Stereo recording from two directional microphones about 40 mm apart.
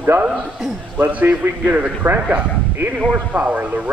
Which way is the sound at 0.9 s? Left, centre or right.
Right.